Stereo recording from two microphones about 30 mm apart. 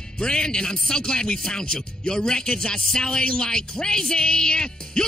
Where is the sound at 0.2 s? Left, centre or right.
Left.